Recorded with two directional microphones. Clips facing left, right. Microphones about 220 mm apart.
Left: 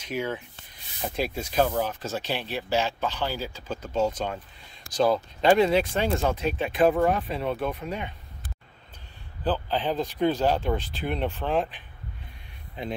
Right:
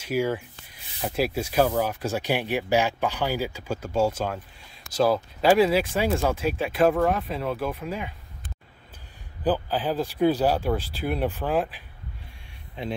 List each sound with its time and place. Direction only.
0.0 s speech: 10° right (ahead or behind)
9.4 s speech: 10° right (ahead or behind)